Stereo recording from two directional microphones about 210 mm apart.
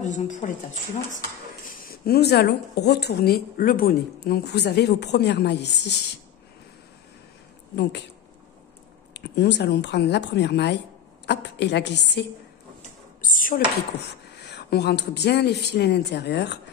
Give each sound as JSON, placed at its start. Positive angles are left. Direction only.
{"t": 0.0, "sound": "speech", "side_deg": 35}
{"t": 1.7, "sound": "a woman's voice", "side_deg": 45}
{"t": 7.7, "sound": "speech", "side_deg": 55}
{"t": 9.1, "sound": "a woman's voice", "side_deg": 55}
{"t": 13.2, "sound": "dishes", "side_deg": 40}
{"t": 14.4, "sound": "a woman's voice", "side_deg": 50}